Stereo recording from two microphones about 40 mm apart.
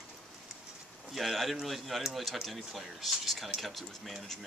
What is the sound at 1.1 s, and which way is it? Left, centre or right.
Speech, centre.